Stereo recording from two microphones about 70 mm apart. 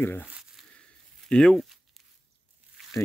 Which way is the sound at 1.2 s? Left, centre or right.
Centre.